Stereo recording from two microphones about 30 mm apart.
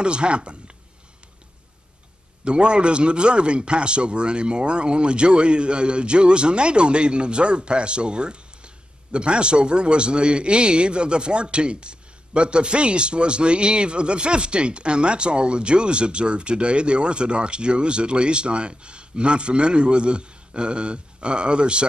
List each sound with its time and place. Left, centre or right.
0.0 s speech: right
2.4 s speech: right